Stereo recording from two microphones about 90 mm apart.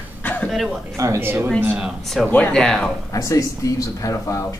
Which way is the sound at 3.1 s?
35° left (ahead or behind).